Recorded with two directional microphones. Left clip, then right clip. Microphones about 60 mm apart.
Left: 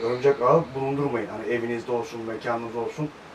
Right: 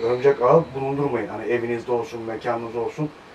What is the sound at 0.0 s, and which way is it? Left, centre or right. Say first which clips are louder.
Speech: right 3 dB; left.